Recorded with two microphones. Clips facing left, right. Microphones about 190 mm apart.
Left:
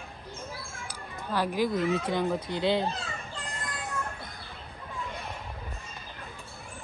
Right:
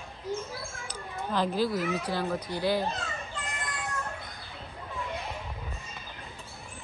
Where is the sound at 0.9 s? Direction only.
10° left (ahead or behind).